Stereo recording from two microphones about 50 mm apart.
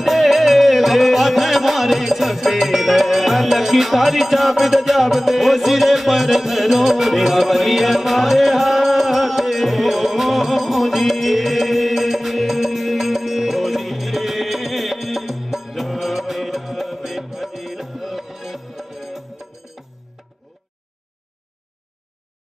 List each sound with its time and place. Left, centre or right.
0.0 s music: centre